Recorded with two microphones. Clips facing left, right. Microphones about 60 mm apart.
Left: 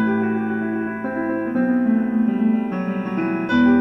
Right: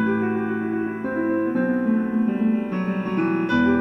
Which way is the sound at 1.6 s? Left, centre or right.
Centre.